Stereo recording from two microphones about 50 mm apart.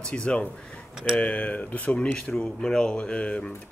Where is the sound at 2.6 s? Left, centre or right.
Centre.